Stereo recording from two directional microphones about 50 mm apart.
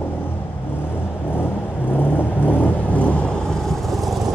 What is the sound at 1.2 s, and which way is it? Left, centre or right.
Vehicle, left.